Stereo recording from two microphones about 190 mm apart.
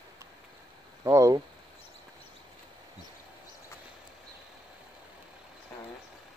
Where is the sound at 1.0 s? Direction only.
15° right (ahead or behind).